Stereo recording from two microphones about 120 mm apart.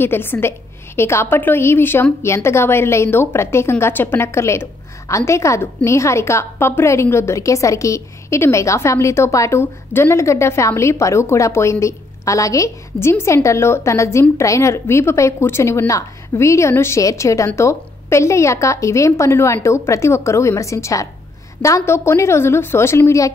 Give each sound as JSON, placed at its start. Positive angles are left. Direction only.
{"t": 0.0, "sound": "a woman's voice", "side_deg": 20}